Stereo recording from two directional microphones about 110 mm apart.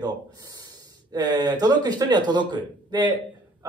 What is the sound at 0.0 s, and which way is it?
Speech, 35° right (ahead or behind).